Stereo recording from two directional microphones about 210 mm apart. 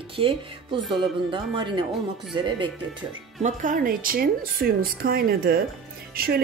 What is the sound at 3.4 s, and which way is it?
A woman's voice, 40° right (ahead or behind).